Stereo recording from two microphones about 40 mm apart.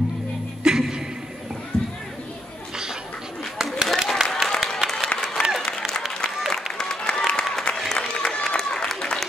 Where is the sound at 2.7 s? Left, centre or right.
Centre.